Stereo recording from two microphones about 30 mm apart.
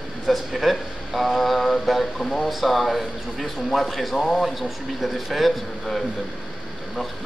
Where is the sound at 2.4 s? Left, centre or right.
Centre.